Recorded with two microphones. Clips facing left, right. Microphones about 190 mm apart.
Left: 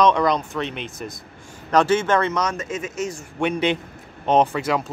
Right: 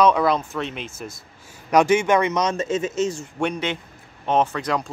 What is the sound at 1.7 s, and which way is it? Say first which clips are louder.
Speech: right 1 dB; 15° right (ahead or behind).